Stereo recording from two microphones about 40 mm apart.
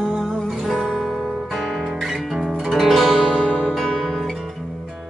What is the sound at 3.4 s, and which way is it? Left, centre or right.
Music, left.